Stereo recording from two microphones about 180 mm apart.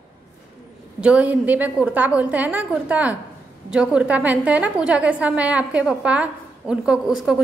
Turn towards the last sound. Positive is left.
turn(degrees=-5)  # may be behind; listen again after turning